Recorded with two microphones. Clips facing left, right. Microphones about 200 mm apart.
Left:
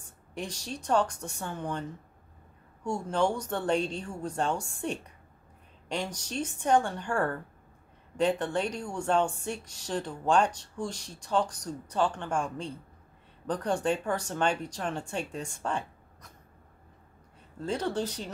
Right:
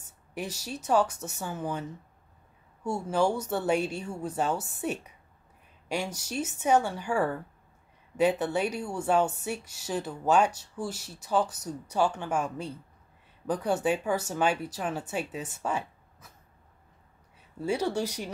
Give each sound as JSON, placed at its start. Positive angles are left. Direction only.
{"t": 0.3, "sound": "speech", "side_deg": -5}
{"t": 17.6, "sound": "speech", "side_deg": -10}